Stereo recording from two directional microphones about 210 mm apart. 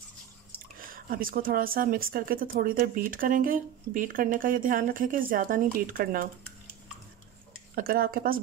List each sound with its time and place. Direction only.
0.8 s speech: 45° right (ahead or behind)
7.7 s speech: 45° right (ahead or behind)